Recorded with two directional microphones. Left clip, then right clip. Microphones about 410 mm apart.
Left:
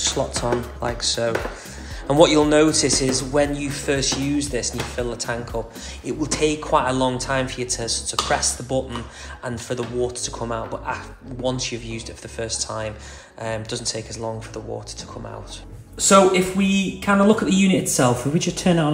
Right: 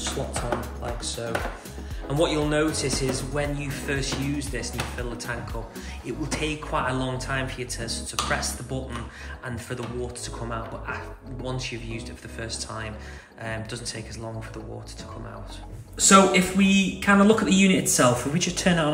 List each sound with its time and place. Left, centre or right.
1.0 s a man's voice: centre
16.0 s speech: centre